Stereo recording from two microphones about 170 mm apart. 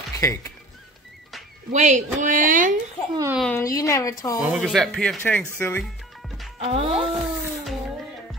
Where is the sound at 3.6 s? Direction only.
20° left (ahead or behind).